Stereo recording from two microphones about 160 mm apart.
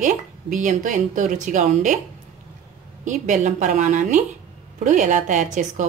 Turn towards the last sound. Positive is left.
turn(degrees=-55)  # may be behind; listen again after turning